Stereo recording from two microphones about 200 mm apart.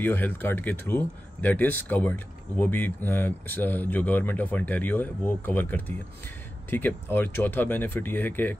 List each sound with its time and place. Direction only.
0.0 s speech: 10° left (ahead or behind)